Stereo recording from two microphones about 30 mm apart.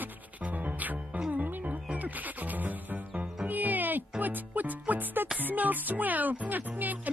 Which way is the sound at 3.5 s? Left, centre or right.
Right.